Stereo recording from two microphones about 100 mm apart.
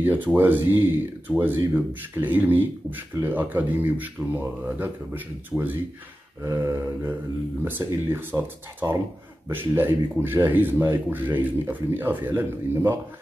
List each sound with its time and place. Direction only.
0.0 s speech: 20° right (ahead or behind)
5.5 s speech: 5° right (ahead or behind)
6.4 s speech: 30° right (ahead or behind)